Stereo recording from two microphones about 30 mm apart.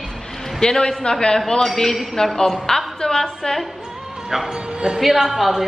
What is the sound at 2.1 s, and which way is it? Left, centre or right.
A man's voice, left.